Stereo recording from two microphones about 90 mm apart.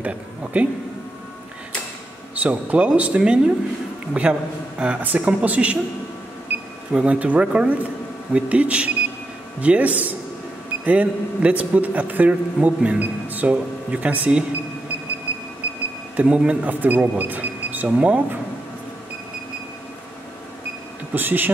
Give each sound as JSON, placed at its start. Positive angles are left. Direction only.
{"t": 0.0, "sound": "speech", "side_deg": -15}
{"t": 2.4, "sound": "a man's voice", "side_deg": -15}
{"t": 6.9, "sound": "a man's voice", "side_deg": -10}
{"t": 16.2, "sound": "a man's voice", "side_deg": -10}
{"t": 21.1, "sound": "a man's voice", "side_deg": -20}